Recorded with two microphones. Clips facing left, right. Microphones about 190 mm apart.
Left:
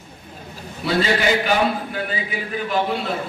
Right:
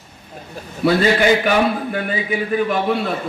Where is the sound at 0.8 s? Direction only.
55° right (ahead or behind).